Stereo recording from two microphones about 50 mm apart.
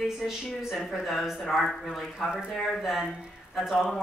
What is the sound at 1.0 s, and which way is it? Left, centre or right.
Speech, centre.